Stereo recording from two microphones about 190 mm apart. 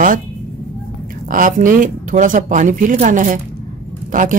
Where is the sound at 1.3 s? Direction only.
45° right (ahead or behind).